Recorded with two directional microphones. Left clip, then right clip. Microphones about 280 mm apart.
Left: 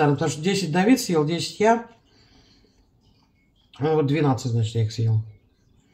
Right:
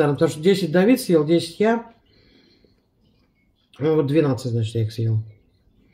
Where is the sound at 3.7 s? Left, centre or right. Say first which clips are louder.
Right 3 dB; centre.